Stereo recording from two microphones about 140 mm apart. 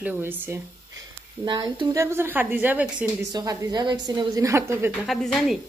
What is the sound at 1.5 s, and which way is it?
Speech, 30° right (ahead or behind).